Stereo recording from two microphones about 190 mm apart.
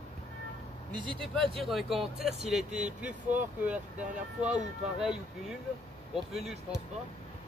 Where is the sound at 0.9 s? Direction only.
25° right (ahead or behind).